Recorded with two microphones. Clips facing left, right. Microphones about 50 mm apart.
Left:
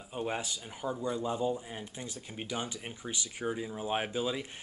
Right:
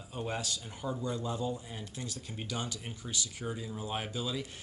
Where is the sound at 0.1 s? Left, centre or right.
Centre.